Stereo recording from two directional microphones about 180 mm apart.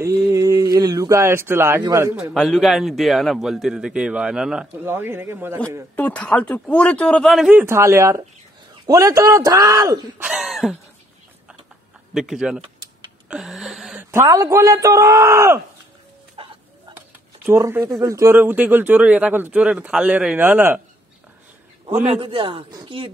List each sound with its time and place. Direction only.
0.0 s speech: 15° right (ahead or behind)
2.3 s a man's voice: centre (ahead or behind)
5.9 s speech: 10° left (ahead or behind); by 10.2 s 20° right (ahead or behind)
10.2 s a man's voice: centre (ahead or behind)
12.1 s a man's voice: 5° right (ahead or behind)
13.3 s a sound: centre (ahead or behind)
14.1 s speech: 20° right (ahead or behind)
16.4 s a sound: 30° right (ahead or behind)
17.5 s speech: 15° right (ahead or behind)
22.0 s speech: 30° right (ahead or behind)